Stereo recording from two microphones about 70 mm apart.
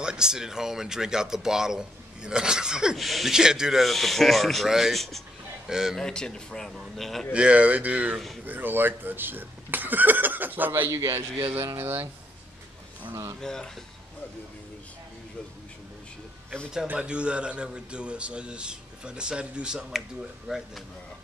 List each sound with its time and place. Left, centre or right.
0.0 s a man's voice: centre
5.9 s a man's voice: centre
7.3 s speech: centre
8.1 s speech: centre
8.5 s speech: right
10.9 s a man's voice: right
11.8 s speech: right
13.1 s a man's voice: right
13.4 s a man's voice: centre
16.8 s a man's voice: centre